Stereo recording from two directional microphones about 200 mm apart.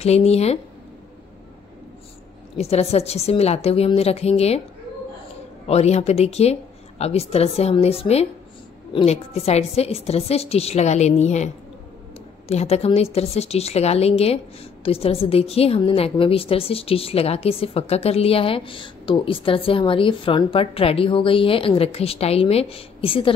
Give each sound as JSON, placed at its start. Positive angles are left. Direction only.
{"t": 0.0, "sound": "speech", "side_deg": 30}
{"t": 2.5, "sound": "speech", "side_deg": 30}
{"t": 5.7, "sound": "a woman's voice", "side_deg": 30}